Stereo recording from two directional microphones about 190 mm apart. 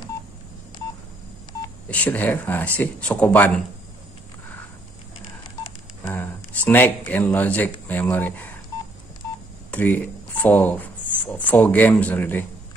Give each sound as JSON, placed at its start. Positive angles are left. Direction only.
{"t": 1.9, "sound": "speech", "side_deg": 10}
{"t": 6.0, "sound": "speech", "side_deg": 10}
{"t": 9.7, "sound": "speech", "side_deg": 10}